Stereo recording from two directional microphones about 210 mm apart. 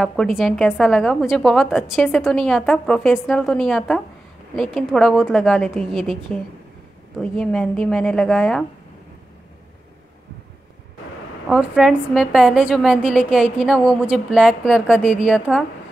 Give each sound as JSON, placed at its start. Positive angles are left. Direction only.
{"t": 0.0, "sound": "a woman's voice", "side_deg": 0}
{"t": 11.4, "sound": "a woman's voice", "side_deg": 0}